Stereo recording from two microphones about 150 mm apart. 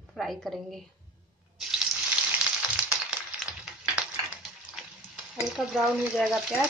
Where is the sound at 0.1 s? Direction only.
5° left (ahead or behind).